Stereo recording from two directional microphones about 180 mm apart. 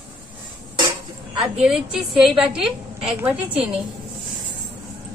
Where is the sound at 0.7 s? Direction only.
25° right (ahead or behind).